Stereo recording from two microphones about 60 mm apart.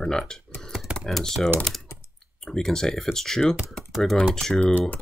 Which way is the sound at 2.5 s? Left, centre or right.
Centre.